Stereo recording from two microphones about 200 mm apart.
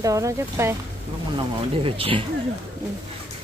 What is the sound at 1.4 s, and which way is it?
Speech, 25° right (ahead or behind).